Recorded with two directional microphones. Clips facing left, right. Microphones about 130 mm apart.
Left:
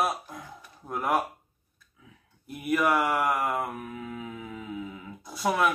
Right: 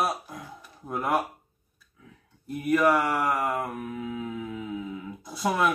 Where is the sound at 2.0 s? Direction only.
5° left (ahead or behind).